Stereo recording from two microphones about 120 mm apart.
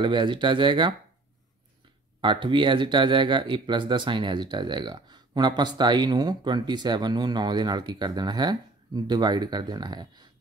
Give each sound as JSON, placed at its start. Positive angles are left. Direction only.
{"t": 0.0, "sound": "speech", "side_deg": -40}
{"t": 2.2, "sound": "speech", "side_deg": -40}